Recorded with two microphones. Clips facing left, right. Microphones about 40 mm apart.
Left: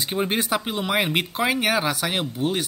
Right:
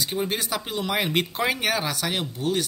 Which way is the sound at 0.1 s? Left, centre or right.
Left.